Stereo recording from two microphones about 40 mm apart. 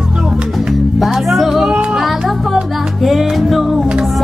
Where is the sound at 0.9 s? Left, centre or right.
Centre.